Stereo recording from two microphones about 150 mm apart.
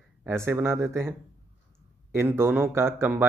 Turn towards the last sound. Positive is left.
turn(degrees=-15)  # may be behind; listen again after turning